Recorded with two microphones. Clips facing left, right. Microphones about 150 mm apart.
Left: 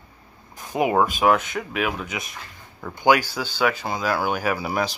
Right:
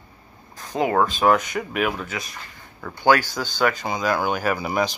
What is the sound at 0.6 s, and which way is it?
Speech, 15° left (ahead or behind).